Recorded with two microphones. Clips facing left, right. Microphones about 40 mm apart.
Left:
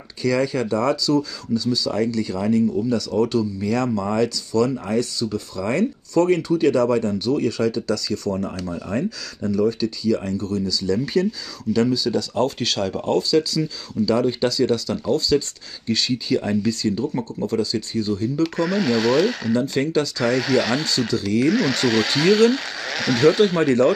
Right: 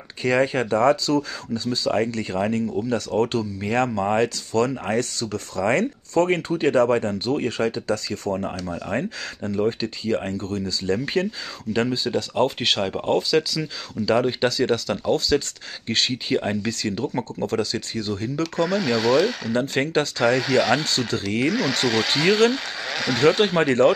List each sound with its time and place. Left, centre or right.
0.2 s speech: right
18.8 s speech: centre
19.5 s speech: right
20.3 s speech: centre
21.1 s speech: right
21.5 s speech: centre
22.1 s speech: centre
22.5 s speech: centre